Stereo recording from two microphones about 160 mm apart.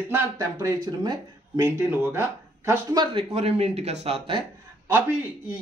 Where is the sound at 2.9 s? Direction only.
25° right (ahead or behind).